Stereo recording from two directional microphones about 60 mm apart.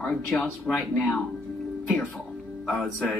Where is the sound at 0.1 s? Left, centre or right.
Centre.